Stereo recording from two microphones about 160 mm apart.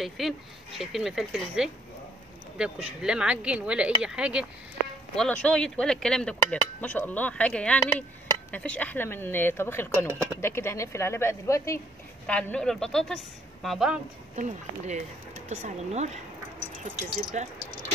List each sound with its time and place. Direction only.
0.2 s speech: centre (ahead or behind); by 11.8 s 20° left (ahead or behind)
12.3 s speech: 10° left (ahead or behind)
14.3 s speech: 50° right (ahead or behind)
17.3 s speech: 50° right (ahead or behind)